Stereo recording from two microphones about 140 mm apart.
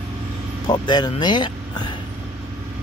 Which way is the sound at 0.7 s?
30° left (ahead or behind).